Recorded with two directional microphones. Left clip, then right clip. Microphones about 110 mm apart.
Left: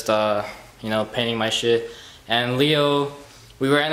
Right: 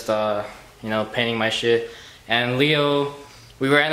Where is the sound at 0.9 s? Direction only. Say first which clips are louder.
Even; 5° left (ahead or behind).